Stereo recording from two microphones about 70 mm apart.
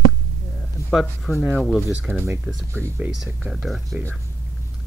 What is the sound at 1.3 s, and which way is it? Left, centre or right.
Speech, left.